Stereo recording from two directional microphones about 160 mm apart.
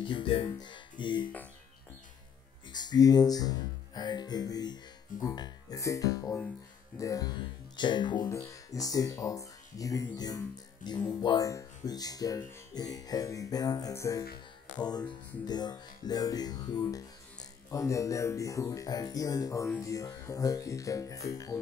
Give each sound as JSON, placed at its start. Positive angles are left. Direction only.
{"t": 0.0, "sound": "speech", "side_deg": 30}
{"t": 2.7, "sound": "speech", "side_deg": 25}